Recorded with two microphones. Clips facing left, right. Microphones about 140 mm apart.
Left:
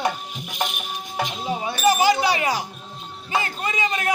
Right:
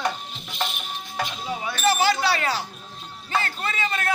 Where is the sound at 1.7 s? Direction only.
15° left (ahead or behind).